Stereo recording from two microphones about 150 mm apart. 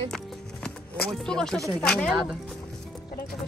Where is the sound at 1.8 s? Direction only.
5° left (ahead or behind).